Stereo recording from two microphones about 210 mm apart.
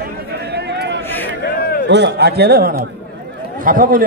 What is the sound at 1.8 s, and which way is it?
A man's voice, 55° right (ahead or behind).